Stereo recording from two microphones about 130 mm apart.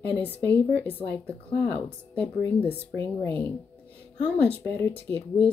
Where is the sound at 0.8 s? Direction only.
10° left (ahead or behind).